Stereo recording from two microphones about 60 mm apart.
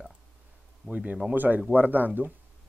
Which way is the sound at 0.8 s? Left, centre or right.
Right.